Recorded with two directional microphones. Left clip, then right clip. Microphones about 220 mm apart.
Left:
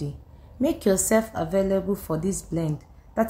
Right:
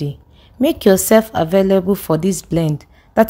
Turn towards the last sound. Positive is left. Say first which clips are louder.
# right 11 dB
turn(degrees=-40)  # may be behind; listen again after turning